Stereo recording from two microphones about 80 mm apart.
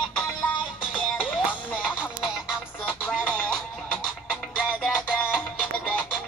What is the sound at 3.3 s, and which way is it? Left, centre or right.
Music, centre.